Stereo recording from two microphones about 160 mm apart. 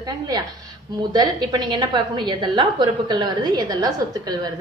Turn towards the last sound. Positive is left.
turn(degrees=-25)  # may be behind; listen again after turning